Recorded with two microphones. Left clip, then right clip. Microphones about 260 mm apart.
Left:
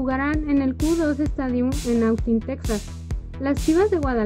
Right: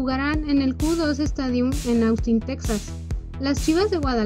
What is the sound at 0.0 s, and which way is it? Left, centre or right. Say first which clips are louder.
A woman's voice: left 1 dB; right.